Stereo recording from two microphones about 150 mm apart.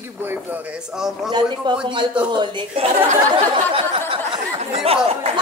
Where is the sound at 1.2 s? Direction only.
30° right (ahead or behind).